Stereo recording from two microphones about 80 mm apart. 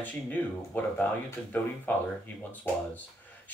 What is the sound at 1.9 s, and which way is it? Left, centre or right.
Speech, left.